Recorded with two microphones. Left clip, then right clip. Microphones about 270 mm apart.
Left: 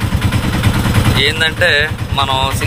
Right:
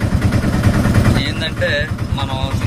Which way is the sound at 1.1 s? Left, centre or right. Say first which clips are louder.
Left 8 dB; centre.